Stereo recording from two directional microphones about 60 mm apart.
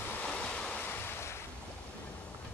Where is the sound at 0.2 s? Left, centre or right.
Centre.